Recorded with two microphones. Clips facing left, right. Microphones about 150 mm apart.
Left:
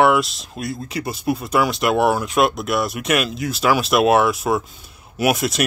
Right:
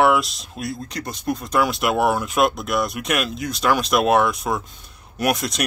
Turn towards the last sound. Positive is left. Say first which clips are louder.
# left 3 dB
turn(degrees=5)  # may be behind; listen again after turning